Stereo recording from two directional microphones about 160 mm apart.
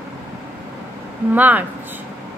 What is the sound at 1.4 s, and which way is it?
Speech, 10° right (ahead or behind).